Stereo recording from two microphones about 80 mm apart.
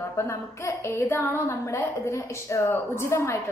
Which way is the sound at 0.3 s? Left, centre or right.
Left.